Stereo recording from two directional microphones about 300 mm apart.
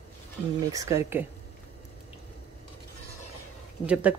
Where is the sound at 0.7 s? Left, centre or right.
Centre.